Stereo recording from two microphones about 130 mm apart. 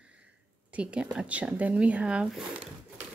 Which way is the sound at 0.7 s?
10° right (ahead or behind).